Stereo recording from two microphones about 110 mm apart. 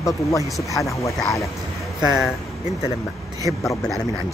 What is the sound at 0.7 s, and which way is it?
Speech, 30° left (ahead or behind).